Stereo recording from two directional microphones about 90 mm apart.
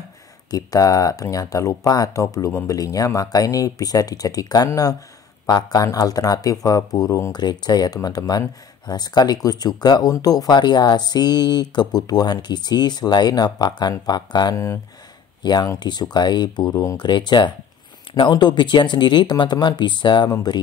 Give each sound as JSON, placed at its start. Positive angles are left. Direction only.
{"t": 0.5, "sound": "speech", "side_deg": 40}
{"t": 7.3, "sound": "speech", "side_deg": 50}